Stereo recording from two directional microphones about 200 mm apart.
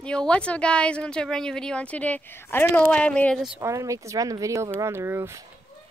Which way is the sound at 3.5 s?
15° right (ahead or behind).